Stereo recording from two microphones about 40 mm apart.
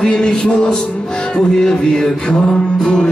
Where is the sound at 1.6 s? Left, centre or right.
Centre.